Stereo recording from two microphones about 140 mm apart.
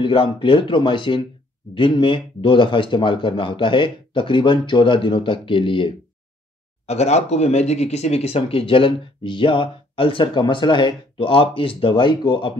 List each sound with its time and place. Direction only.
0.0 s speech: 35° left (ahead or behind)
6.9 s speech: 50° left (ahead or behind); by 12.5 s 35° left (ahead or behind)